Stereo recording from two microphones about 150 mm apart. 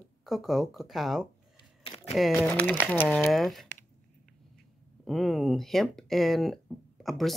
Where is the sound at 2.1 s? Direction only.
Centre (ahead or behind).